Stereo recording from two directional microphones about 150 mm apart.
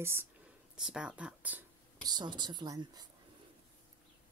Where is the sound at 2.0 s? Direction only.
30° right (ahead or behind).